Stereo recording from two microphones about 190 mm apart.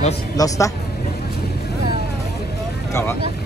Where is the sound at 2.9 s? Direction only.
10° left (ahead or behind).